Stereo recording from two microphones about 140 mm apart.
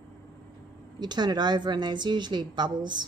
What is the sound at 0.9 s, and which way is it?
A woman's voice, 30° right (ahead or behind).